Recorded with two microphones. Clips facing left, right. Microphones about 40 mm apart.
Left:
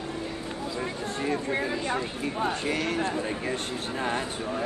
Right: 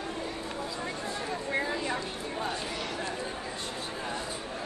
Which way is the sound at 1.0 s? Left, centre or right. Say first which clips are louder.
Left 8 dB; left.